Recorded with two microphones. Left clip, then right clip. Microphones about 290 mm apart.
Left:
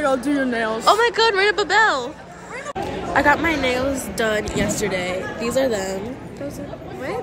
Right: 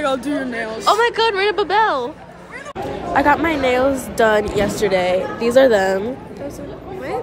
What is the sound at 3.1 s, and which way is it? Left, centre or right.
A woman's voice, centre.